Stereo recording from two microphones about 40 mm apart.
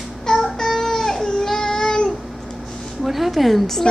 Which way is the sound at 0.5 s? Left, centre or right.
Centre.